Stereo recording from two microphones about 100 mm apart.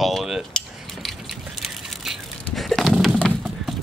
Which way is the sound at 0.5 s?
10° left (ahead or behind).